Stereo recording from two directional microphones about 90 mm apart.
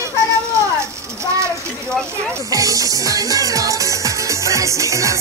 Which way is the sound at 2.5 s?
40° right (ahead or behind).